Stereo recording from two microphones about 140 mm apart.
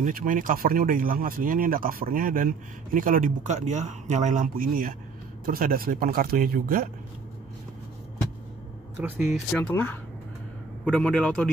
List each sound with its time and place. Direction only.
0.0 s speech: 80° right
9.0 s speech: 10° right (ahead or behind)
9.5 s a man's voice: 10° left (ahead or behind)